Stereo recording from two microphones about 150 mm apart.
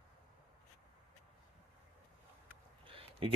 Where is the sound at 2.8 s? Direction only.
35° right (ahead or behind).